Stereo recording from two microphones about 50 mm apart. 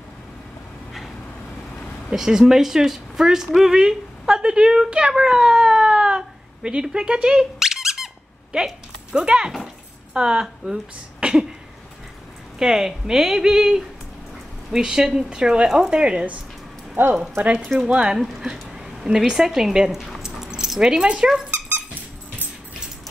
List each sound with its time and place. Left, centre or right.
2.0 s speech: centre
7.2 s squeak: centre
10.1 s speech: centre
11.1 s a sound: centre
12.5 s speech: centre
16.9 s speech: right
17.7 s speech: centre
18.4 s a sound: centre
19.0 s speech: centre
20.2 s dog: centre